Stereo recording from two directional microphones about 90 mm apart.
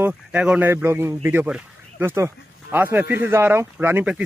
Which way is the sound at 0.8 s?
25° right (ahead or behind).